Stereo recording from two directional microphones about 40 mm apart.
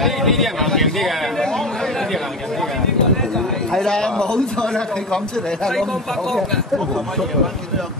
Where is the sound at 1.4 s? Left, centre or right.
Centre.